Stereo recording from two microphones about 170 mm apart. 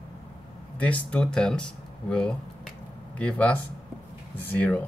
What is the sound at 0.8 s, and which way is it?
Speech, 5° left (ahead or behind).